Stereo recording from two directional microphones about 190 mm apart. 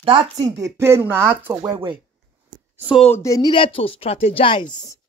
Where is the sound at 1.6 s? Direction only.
20° right (ahead or behind).